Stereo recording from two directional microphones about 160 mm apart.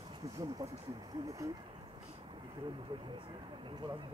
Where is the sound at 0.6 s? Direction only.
20° right (ahead or behind).